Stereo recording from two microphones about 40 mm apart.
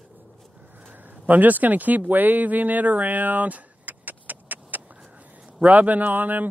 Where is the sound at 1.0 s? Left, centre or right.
Right.